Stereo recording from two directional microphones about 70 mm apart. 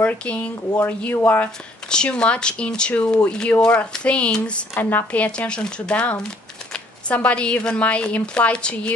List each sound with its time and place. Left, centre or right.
0.0 s speech: centre
1.9 s speech: centre
4.7 s speech: left